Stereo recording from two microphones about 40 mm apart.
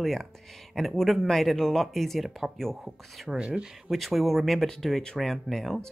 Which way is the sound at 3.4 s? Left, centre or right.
Right.